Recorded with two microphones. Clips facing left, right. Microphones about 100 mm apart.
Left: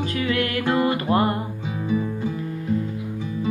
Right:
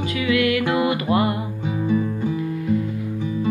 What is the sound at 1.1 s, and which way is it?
Music, 45° left (ahead or behind).